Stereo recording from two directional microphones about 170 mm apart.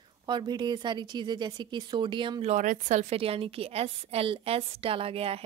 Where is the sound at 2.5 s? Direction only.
45° right (ahead or behind).